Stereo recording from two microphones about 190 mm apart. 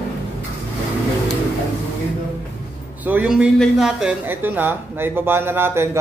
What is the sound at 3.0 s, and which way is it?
Speech, 5° right (ahead or behind).